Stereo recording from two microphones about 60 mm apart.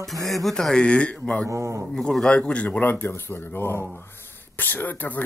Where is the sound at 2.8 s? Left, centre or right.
Left.